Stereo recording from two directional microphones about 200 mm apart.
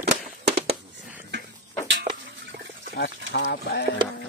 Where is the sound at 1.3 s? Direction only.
60° right (ahead or behind).